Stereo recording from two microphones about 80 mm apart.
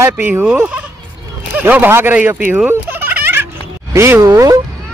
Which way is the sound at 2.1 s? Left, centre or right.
Centre.